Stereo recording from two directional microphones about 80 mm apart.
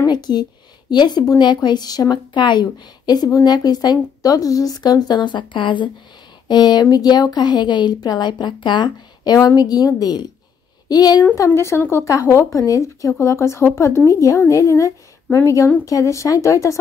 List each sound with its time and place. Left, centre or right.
0.0 s a woman's voice: left
6.4 s a woman's voice: left
11.3 s speech: left